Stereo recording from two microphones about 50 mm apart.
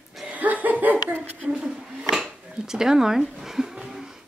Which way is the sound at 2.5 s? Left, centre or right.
Centre.